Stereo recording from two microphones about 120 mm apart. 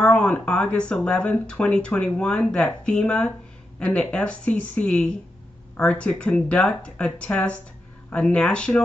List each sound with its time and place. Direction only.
0.0 s speech: 5° left (ahead or behind)